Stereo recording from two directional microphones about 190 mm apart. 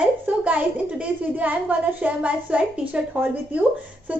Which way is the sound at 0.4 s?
5° right (ahead or behind).